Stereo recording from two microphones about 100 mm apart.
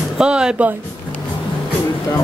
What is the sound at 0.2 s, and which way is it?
Speech, 10° right (ahead or behind).